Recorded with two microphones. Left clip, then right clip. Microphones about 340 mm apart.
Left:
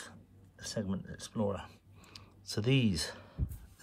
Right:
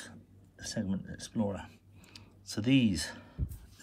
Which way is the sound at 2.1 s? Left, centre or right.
Centre.